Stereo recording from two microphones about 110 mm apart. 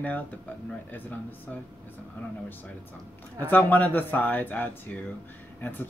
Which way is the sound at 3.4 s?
15° left (ahead or behind).